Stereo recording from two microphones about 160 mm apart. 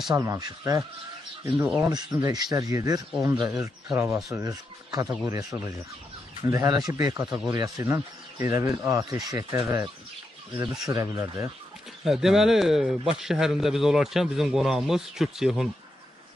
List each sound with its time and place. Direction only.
0.1 s speech: 20° right (ahead or behind)
1.9 s speech: 25° right (ahead or behind)
12.0 s a man's voice: centre (ahead or behind)